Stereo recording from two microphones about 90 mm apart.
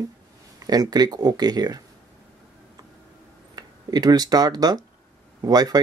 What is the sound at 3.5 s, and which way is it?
Speech, 50° right (ahead or behind).